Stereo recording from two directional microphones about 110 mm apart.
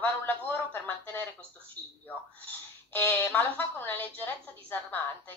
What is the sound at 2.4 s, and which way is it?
A woman's voice, 20° left (ahead or behind).